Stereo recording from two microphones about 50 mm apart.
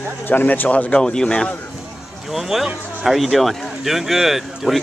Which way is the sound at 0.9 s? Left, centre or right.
Centre.